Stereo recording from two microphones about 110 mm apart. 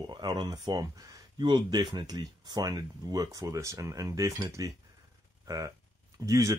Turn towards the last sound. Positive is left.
turn(degrees=-30)  # may be behind; listen again after turning